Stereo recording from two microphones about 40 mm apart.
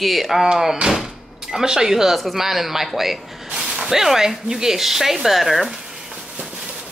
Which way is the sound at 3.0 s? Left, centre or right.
Centre.